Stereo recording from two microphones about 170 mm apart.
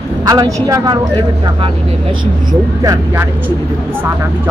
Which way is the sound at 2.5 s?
20° right (ahead or behind).